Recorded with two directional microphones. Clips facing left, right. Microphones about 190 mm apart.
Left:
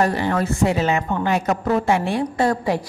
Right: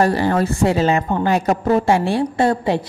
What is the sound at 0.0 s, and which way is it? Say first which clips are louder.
A woman's voice: right 3 dB; 35° right (ahead or behind).